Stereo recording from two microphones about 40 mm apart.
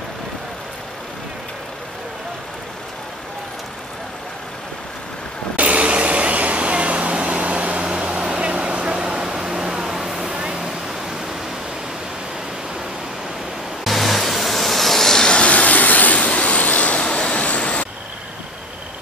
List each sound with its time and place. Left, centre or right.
5.6 s vehicle: right; by 10.3 s centre
10.3 s waterfall: right
13.8 s vehicle: centre
15.4 s vehicle: left